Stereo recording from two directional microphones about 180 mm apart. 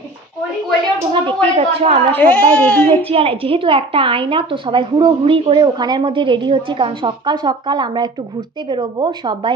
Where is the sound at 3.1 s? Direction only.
30° right (ahead or behind).